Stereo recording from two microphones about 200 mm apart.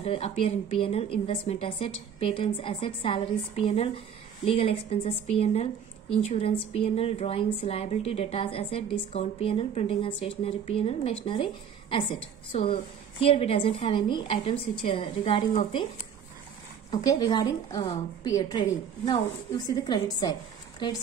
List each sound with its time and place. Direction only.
0.0 s a woman's voice: 30° left (ahead or behind)
16.9 s a woman's voice: 20° left (ahead or behind)